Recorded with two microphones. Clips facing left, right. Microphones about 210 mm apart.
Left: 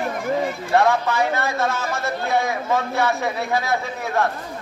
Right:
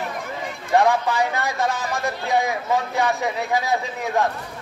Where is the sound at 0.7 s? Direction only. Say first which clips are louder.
Right 1 dB; 15° right (ahead or behind).